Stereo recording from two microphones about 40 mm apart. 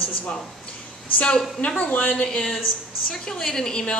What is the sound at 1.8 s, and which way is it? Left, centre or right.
Speech, left.